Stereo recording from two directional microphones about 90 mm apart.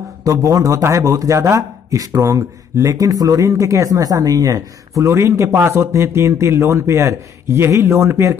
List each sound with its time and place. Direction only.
0.2 s speech: 35° right (ahead or behind)